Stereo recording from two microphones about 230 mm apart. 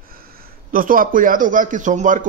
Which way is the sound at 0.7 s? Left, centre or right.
Right.